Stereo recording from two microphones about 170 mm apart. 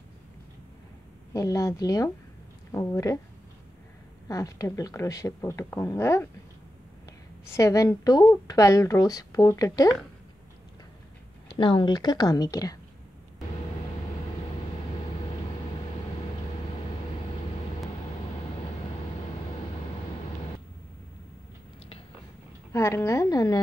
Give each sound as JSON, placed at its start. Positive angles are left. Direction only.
{"t": 1.3, "sound": "a woman's voice", "side_deg": 20}
{"t": 4.3, "sound": "a woman's voice", "side_deg": 20}
{"t": 7.4, "sound": "a woman's voice", "side_deg": 15}
{"t": 11.5, "sound": "a woman's voice", "side_deg": 30}
{"t": 22.7, "sound": "a woman's voice", "side_deg": 15}